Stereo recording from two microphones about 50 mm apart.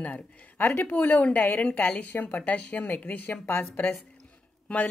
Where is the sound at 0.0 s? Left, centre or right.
Left.